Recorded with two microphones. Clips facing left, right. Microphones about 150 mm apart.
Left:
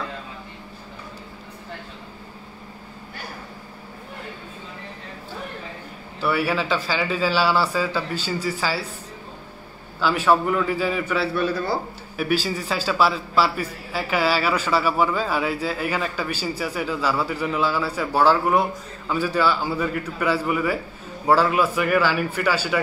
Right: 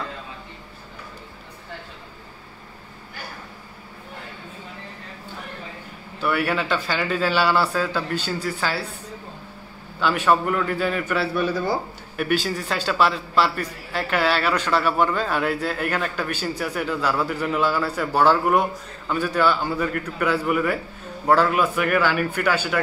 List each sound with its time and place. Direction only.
6.2 s speech: centre (ahead or behind)
9.9 s speech: centre (ahead or behind)